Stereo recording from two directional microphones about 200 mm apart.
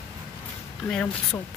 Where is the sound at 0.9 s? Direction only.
5° left (ahead or behind).